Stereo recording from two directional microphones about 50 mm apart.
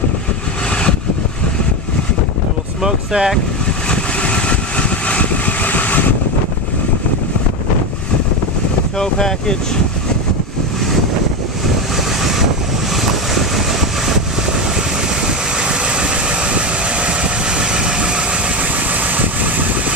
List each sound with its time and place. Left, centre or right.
2.8 s speech: centre
3.9 s vehicle: left
8.9 s speech: centre
12.2 s vehicle: centre
15.6 s vehicle: right
19.1 s vehicle: right